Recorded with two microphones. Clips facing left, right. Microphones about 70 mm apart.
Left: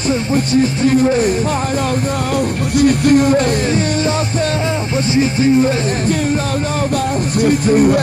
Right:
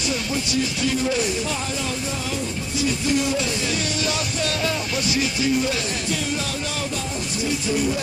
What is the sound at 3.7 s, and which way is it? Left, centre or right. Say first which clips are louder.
Music: left 9 dB; left.